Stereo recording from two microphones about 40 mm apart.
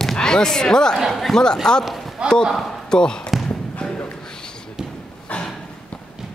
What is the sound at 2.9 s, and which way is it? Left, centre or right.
Speech, centre.